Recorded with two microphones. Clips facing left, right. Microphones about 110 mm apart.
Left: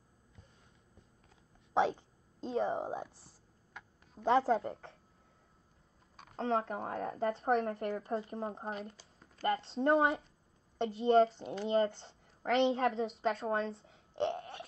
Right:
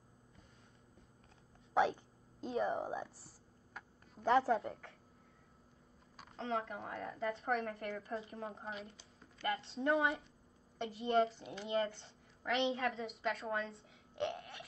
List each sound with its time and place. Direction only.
1.7 s speech: 30° left (ahead or behind)
4.2 s a woman's voice: 25° left (ahead or behind)
6.3 s a woman's voice: 35° left (ahead or behind)